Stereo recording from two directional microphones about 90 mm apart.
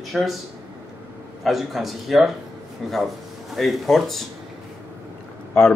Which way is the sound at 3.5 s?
Centre (ahead or behind).